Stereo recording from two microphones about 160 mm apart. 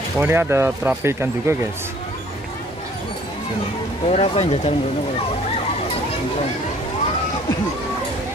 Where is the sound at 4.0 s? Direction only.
40° left (ahead or behind).